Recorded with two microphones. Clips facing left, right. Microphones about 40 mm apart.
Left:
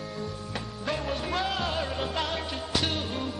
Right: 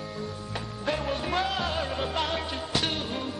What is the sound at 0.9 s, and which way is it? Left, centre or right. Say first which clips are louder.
Music: right 2 dB; centre.